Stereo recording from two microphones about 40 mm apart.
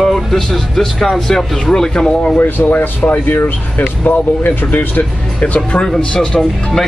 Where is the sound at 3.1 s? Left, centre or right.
Left.